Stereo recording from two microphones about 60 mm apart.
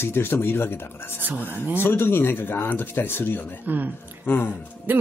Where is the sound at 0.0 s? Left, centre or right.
Left.